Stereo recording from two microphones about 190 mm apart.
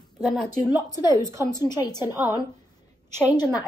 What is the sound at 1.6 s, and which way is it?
Speech, 20° left (ahead or behind).